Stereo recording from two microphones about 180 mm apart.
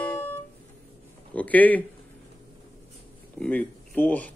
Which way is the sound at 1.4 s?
10° left (ahead or behind).